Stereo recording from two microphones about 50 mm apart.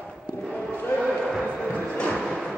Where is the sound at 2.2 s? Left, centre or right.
Centre.